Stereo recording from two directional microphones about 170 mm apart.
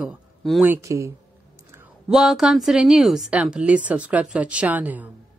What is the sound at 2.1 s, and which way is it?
A woman's voice, centre (ahead or behind).